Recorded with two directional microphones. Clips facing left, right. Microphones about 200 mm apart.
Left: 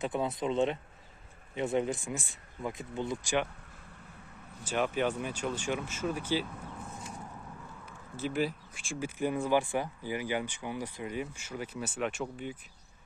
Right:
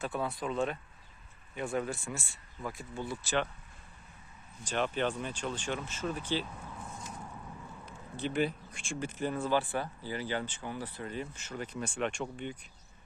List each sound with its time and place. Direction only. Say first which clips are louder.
0.0 s speech: left 3 dB; 20° left (ahead or behind)
4.6 s speech: left 2 dB; 10° left (ahead or behind)
8.2 s speech: even; centre (ahead or behind)
9.2 s speech: left 3 dB; 15° left (ahead or behind)